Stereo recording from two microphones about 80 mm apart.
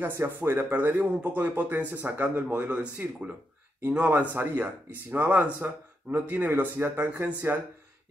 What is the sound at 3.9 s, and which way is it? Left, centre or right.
Speech, centre.